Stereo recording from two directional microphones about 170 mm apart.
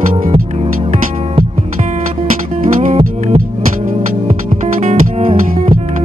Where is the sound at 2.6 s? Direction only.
50° right (ahead or behind).